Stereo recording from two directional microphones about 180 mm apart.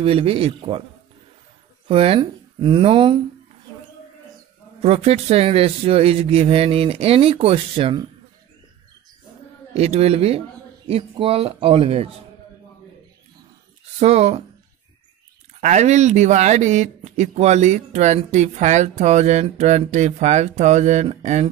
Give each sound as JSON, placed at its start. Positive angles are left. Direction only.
{"t": 0.0, "sound": "speech", "side_deg": -30}
{"t": 1.9, "sound": "speech", "side_deg": -30}
{"t": 4.8, "sound": "speech", "side_deg": -35}
{"t": 9.8, "sound": "speech", "side_deg": -35}
{"t": 13.9, "sound": "speech", "side_deg": -35}
{"t": 15.6, "sound": "speech", "side_deg": -40}